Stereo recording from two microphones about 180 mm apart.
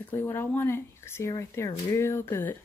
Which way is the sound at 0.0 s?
10° left (ahead or behind).